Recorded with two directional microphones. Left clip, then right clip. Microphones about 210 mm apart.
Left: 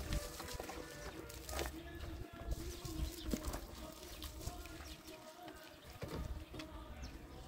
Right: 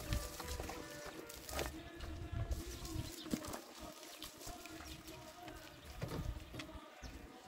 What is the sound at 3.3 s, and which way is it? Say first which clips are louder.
Pigeon: even; centre (ahead or behind).